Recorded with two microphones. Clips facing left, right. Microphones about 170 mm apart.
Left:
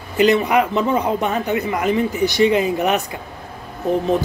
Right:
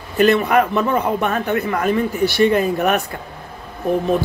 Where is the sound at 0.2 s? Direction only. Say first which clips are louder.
Right 1 dB; 15° left (ahead or behind).